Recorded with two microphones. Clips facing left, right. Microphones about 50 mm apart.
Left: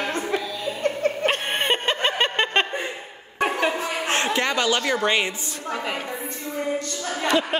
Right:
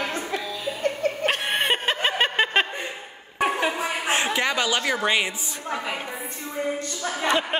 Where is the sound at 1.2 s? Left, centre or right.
Centre.